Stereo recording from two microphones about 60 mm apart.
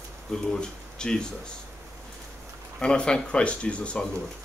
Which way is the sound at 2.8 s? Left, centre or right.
Centre.